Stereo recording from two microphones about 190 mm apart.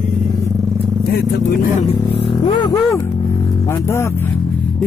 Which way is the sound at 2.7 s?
15° left (ahead or behind).